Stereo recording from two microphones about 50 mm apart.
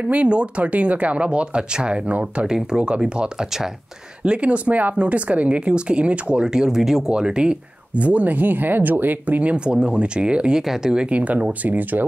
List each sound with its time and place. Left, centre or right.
0.0 s speech: right
2.4 s speech: centre
6.4 s speech: centre
7.2 s speech: centre
11.1 s speech: right